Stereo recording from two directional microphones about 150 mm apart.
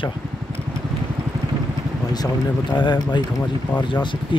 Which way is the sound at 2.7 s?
30° left (ahead or behind).